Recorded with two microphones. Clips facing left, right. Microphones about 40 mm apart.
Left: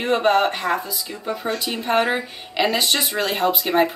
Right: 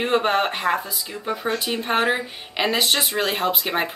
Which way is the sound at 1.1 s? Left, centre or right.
Right.